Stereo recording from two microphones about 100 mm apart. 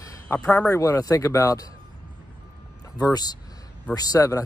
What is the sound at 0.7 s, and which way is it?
Speech, 30° left (ahead or behind).